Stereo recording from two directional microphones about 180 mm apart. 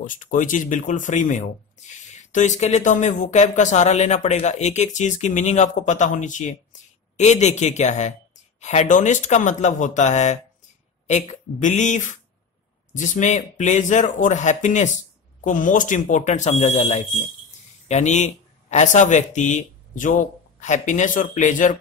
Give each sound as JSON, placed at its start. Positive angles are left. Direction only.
{"t": 0.0, "sound": "speech", "side_deg": 45}